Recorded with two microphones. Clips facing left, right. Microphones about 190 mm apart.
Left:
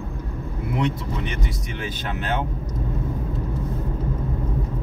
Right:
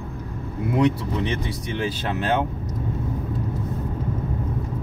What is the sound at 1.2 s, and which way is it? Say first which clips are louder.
Speech: right 3 dB; 30° right (ahead or behind).